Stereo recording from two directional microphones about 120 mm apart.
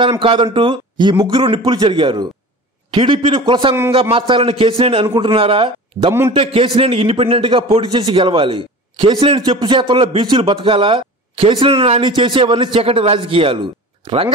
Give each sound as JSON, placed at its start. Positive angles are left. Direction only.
{"t": 0.2, "sound": "a man's voice", "side_deg": -45}
{"t": 9.6, "sound": "a man's voice", "side_deg": -40}